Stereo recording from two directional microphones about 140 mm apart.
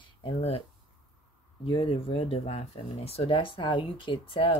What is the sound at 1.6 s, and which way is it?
Speech, 40° left (ahead or behind).